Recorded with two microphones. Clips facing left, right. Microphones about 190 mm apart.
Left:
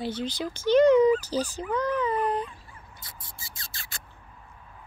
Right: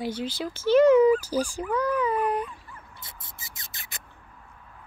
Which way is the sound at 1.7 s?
10° right (ahead or behind).